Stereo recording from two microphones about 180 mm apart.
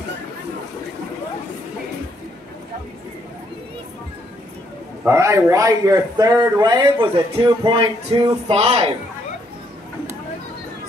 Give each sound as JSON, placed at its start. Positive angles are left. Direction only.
{"t": 5.0, "sound": "a man's voice", "side_deg": -15}